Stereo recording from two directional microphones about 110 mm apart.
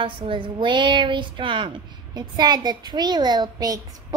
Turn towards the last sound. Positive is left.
turn(degrees=-35)  # may be behind; listen again after turning